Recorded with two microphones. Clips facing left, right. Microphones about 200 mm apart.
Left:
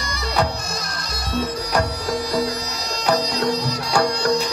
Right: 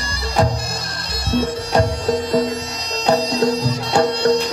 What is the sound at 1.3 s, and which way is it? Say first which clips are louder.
Bagpipes: right 4 dB; 25° right (ahead or behind).